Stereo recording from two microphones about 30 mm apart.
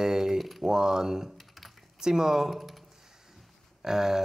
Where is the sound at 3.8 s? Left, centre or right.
Centre.